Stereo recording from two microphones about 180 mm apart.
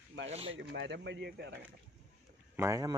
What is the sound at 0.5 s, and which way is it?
Speech, 80° right.